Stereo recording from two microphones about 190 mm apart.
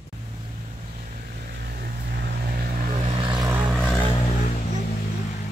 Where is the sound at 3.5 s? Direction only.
10° right (ahead or behind).